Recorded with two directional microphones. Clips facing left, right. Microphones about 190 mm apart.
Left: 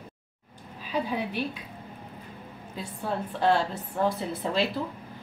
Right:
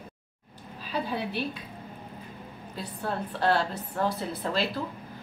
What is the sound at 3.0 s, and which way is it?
A woman's voice, 15° left (ahead or behind).